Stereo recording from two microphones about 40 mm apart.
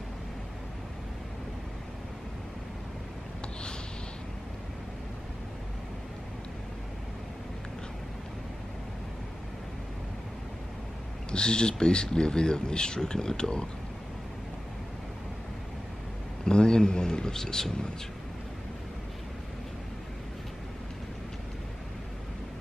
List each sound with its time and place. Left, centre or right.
11.3 s speech: left
16.4 s speech: centre